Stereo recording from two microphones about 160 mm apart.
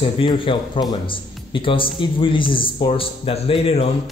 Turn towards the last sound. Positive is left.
turn(degrees=40)  # may be behind; listen again after turning